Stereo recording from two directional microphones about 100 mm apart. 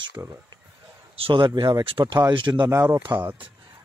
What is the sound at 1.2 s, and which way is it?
Speech, 55° right (ahead or behind).